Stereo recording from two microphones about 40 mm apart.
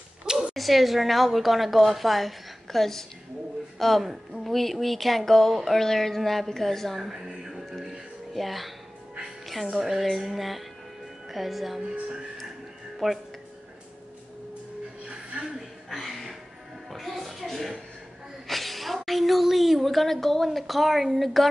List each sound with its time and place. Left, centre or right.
0.6 s a woman's voice: centre
7.0 s a woman's voice: centre
7.4 s a sound: centre
8.3 s a woman's voice: centre
13.0 s a woman's voice: centre
15.9 s music: centre
18.5 s a woman's voice: centre